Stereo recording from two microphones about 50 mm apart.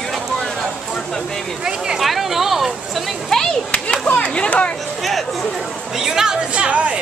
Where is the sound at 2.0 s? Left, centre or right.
Centre.